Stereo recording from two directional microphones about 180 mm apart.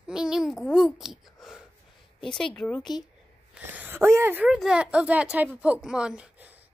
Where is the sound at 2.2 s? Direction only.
5° left (ahead or behind).